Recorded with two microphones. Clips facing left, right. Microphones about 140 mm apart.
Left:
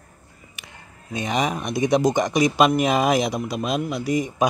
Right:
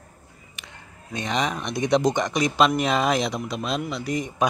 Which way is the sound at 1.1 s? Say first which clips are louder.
Left 2 dB; 10° left (ahead or behind).